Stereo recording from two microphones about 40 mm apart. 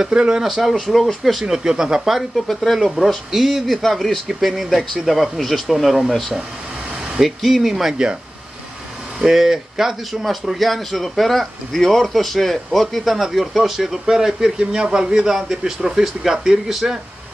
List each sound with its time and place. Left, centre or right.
0.1 s speech: right
0.4 s speech: centre
0.7 s speech: centre
1.4 s speech: centre
2.4 s speech: centre
3.3 s speech: centre
7.2 s speech: centre
9.2 s speech: centre